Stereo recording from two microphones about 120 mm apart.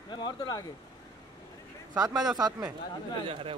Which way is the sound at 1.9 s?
35° right (ahead or behind).